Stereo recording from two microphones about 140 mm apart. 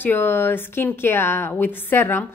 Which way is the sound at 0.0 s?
15° left (ahead or behind).